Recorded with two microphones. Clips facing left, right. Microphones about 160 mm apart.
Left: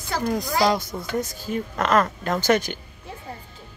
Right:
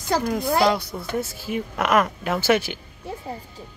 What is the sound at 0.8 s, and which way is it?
Speech, 20° left (ahead or behind).